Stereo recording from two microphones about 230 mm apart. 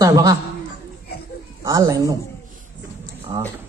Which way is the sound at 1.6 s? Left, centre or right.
Centre.